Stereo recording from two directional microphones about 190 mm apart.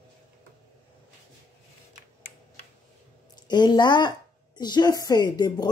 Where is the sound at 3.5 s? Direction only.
20° left (ahead or behind).